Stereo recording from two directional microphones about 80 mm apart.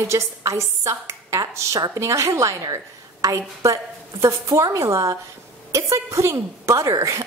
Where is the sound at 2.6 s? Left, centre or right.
Right.